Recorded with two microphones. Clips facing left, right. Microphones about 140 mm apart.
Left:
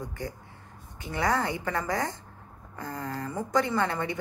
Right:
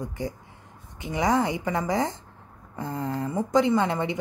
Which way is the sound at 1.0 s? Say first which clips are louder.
Right 4 dB; 20° right (ahead or behind).